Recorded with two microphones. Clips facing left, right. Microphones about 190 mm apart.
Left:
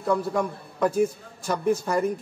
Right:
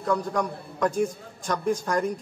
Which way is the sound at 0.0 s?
5° left (ahead or behind).